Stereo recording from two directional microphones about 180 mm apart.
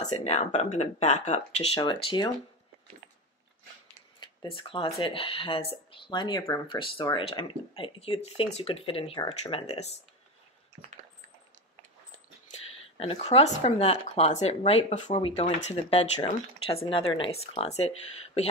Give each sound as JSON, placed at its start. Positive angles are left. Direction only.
{"t": 0.1, "sound": "speech", "side_deg": 35}
{"t": 4.2, "sound": "speech", "side_deg": 25}
{"t": 12.9, "sound": "speech", "side_deg": 35}